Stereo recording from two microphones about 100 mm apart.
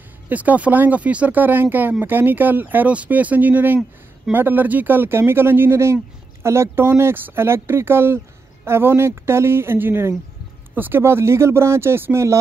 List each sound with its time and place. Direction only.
0.3 s speech: 15° right (ahead or behind)